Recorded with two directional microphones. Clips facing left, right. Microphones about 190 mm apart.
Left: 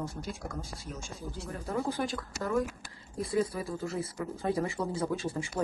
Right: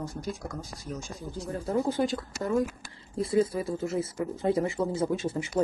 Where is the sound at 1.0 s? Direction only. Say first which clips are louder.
Right 3 dB; 35° right (ahead or behind).